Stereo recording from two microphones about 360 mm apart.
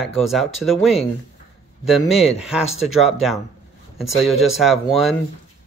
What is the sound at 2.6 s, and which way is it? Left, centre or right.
Speech, centre.